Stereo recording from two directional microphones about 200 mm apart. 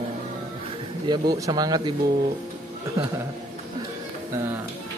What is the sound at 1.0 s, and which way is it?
Speech, 20° right (ahead or behind).